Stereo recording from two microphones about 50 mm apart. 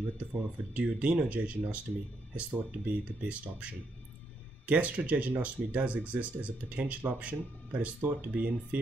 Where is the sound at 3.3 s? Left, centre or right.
Right.